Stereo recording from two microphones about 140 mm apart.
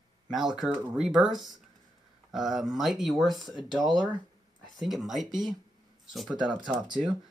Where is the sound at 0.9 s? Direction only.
5° right (ahead or behind).